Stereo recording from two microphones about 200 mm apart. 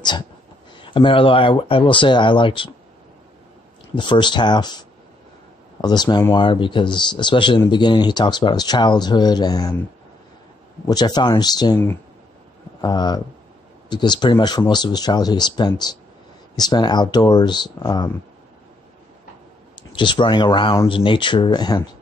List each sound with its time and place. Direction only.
0.8 s speech: 25° left (ahead or behind)
3.9 s speech: 25° left (ahead or behind)
10.9 s speech: 20° left (ahead or behind)
12.8 s speech: 20° left (ahead or behind)
19.9 s speech: 25° left (ahead or behind)